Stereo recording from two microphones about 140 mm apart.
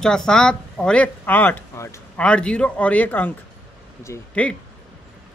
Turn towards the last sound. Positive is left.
turn(degrees=10)  # may be behind; listen again after turning